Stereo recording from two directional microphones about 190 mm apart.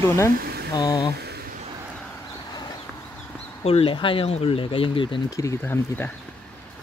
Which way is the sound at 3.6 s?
30° left (ahead or behind).